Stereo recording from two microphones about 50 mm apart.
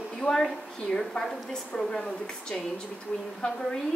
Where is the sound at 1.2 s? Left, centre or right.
Left.